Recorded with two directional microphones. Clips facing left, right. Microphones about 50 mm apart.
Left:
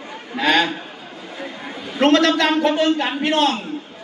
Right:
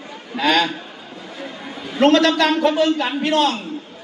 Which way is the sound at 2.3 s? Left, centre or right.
Centre.